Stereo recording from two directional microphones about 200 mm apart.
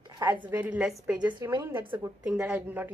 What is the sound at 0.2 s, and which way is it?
A woman's voice, 10° right (ahead or behind).